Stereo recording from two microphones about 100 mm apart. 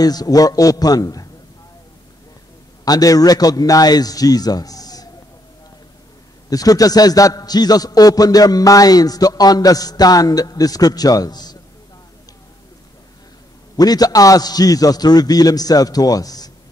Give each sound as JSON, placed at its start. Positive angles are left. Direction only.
{"t": 0.0, "sound": "a man's voice", "side_deg": 40}
{"t": 2.8, "sound": "a man's voice", "side_deg": 40}
{"t": 6.5, "sound": "a man's voice", "side_deg": 40}
{"t": 13.7, "sound": "a man's voice", "side_deg": 40}